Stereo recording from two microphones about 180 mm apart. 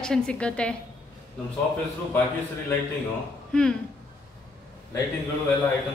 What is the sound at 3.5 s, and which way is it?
Speech, 5° left (ahead or behind).